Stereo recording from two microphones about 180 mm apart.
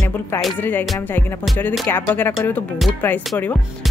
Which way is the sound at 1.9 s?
10° left (ahead or behind).